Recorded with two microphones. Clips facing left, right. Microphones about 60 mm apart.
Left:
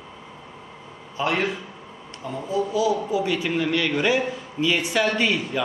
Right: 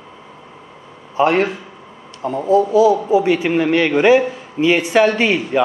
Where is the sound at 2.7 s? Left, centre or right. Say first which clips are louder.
Right 7 dB; right.